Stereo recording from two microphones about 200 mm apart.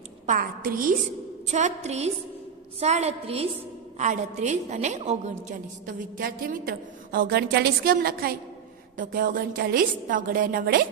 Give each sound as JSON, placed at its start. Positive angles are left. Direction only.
{"t": 0.3, "sound": "a woman's voice", "side_deg": -45}
{"t": 1.5, "sound": "a woman's voice", "side_deg": -35}